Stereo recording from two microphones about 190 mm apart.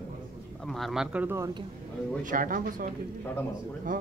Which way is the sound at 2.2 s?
45° right (ahead or behind).